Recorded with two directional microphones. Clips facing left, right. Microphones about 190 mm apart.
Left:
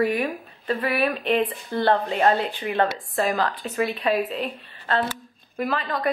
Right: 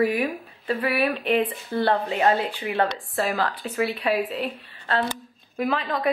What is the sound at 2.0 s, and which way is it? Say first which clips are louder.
Speech: left 1 dB; 10° right (ahead or behind).